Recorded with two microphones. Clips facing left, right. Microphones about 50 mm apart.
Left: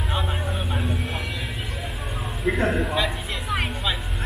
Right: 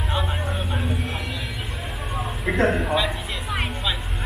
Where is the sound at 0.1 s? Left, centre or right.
Centre.